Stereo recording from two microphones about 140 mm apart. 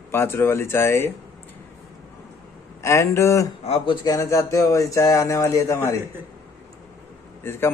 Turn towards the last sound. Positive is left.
turn(degrees=15)  # may be behind; listen again after turning